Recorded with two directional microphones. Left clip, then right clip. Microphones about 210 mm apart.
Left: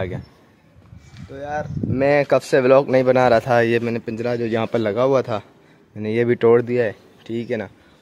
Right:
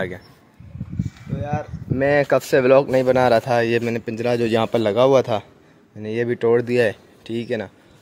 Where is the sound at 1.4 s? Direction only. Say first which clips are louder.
Left 2 dB; 15° left (ahead or behind); by 5.5 s centre (ahead or behind).